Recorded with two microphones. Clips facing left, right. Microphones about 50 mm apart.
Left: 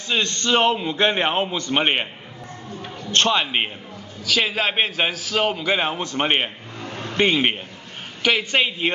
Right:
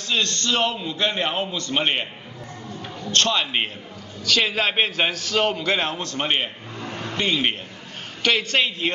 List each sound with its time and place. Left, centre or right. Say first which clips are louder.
0.1 s a man's voice: left 3 dB; left
3.1 s a man's voice: left 2 dB; left
6.8 s a sound: even; right
7.2 s a man's voice: left 4 dB; left
8.2 s a man's voice: left 1 dB; centre